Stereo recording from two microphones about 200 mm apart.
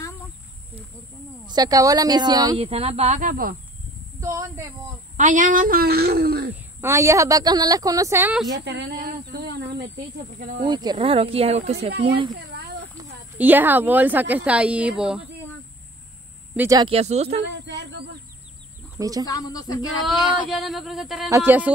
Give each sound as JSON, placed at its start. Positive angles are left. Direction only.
{"t": 1.4, "sound": "speech", "side_deg": -20}
{"t": 4.2, "sound": "speech", "side_deg": -15}
{"t": 5.1, "sound": "a woman's voice", "side_deg": -40}
{"t": 6.5, "sound": "a woman's voice", "side_deg": -15}
{"t": 8.5, "sound": "speech", "side_deg": -60}
{"t": 9.0, "sound": "a sound", "side_deg": -55}
{"t": 10.6, "sound": "speech", "side_deg": -20}
{"t": 13.4, "sound": "a woman's voice", "side_deg": -10}
{"t": 16.5, "sound": "speech", "side_deg": -15}
{"t": 17.4, "sound": "speech", "side_deg": -60}
{"t": 18.9, "sound": "a woman's voice", "side_deg": -15}
{"t": 19.2, "sound": "speech", "side_deg": 20}
{"t": 20.4, "sound": "speech", "side_deg": 0}
{"t": 21.3, "sound": "a woman's voice", "side_deg": -10}